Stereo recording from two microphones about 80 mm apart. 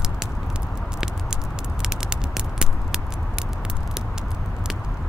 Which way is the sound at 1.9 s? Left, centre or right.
Centre.